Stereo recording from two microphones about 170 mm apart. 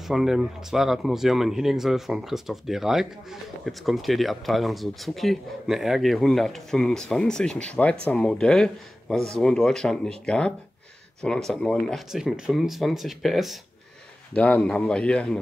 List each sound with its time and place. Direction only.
0.1 s a man's voice: centre (ahead or behind)